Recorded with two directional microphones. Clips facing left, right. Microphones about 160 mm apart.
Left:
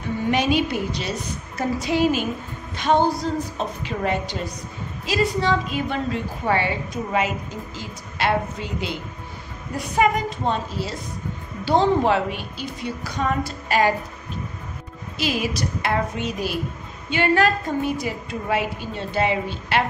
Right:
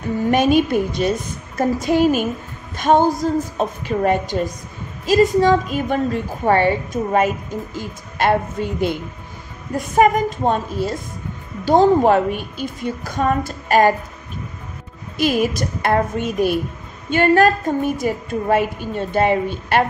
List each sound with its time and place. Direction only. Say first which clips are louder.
0.3 s a woman's voice: right 6 dB; 50° right (ahead or behind)
15.1 s a woman's voice: right 6 dB; 50° right (ahead or behind)